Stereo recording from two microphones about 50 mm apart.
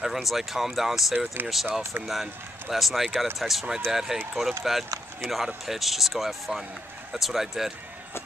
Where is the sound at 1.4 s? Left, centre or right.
Right.